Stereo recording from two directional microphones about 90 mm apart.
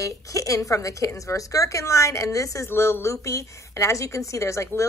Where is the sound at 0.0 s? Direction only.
35° left (ahead or behind).